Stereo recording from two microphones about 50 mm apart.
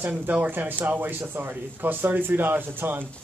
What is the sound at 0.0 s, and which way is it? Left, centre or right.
Speech, right.